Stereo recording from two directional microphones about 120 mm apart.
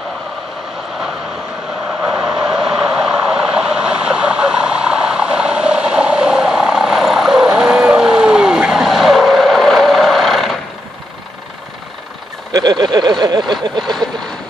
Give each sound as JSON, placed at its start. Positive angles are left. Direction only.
{"t": 2.0, "sound": "vehicle", "side_deg": -5}
{"t": 12.5, "sound": "a sound", "side_deg": -35}
{"t": 13.5, "sound": "vehicle", "side_deg": 5}